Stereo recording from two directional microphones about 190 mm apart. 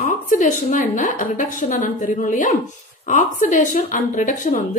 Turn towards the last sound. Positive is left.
turn(degrees=45)  # may be behind; listen again after turning